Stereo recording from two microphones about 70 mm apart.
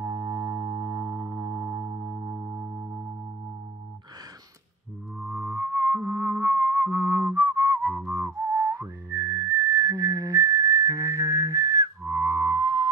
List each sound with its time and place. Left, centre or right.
0.0 s music: right
5.3 s music: right
7.9 s whistling: right
8.4 s whistling: right
12.0 s music: right